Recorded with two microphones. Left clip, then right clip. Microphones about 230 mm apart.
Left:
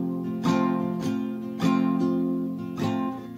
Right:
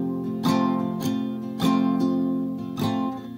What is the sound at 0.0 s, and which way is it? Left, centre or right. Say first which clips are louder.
Music: right 2 dB; right.